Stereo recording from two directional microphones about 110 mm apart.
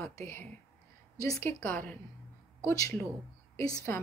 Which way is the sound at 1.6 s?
15° left (ahead or behind).